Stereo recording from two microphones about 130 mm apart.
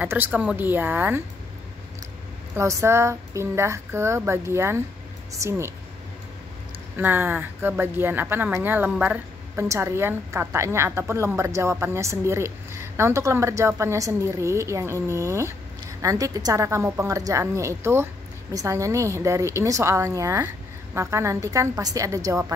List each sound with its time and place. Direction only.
0.0 s speech: 15° right (ahead or behind)
2.5 s speech: 20° right (ahead or behind)
7.0 s speech: 15° right (ahead or behind)